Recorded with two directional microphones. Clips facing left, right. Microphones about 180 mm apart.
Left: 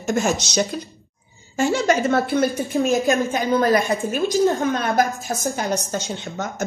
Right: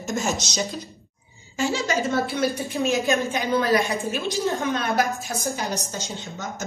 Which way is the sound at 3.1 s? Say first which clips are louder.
Left 3 dB; 45° left (ahead or behind).